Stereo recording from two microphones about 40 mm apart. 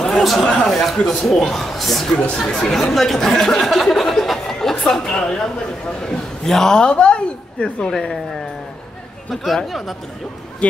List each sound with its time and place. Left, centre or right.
0.0 s a sound: centre
0.4 s a man's voice: centre
6.4 s a man's voice: centre
6.9 s a woman's voice: left
7.9 s a man's voice: centre
9.3 s speech: centre
10.6 s speech: left